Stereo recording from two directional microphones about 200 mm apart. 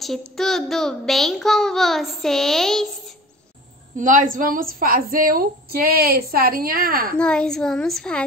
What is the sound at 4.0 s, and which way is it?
A woman's voice, 40° right (ahead or behind).